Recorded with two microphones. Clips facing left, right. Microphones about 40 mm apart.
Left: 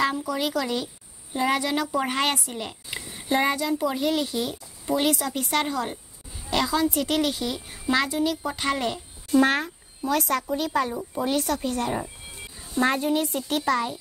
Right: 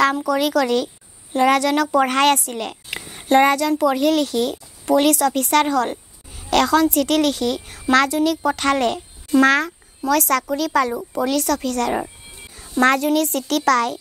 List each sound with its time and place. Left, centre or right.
0.0 s a woman's voice: right
1.3 s speech: right
1.6 s speech: right
2.7 s a sound: right
3.3 s speech: right
6.5 s a woman's voice: right
7.9 s a woman's voice: right
8.5 s a woman's voice: right
12.8 s speech: right